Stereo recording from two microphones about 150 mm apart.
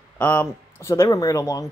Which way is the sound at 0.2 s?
15° left (ahead or behind).